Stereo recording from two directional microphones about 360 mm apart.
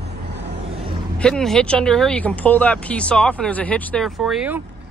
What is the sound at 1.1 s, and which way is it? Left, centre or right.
Speech, centre.